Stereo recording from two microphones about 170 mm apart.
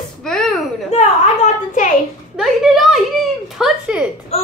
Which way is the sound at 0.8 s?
40° left (ahead or behind).